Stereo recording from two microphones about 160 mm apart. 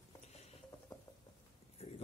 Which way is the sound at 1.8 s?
40° left (ahead or behind).